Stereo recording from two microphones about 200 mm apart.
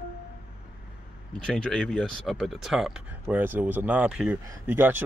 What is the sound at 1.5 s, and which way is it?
Speech, centre (ahead or behind).